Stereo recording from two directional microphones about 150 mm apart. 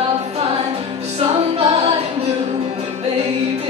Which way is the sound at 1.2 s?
40° right (ahead or behind).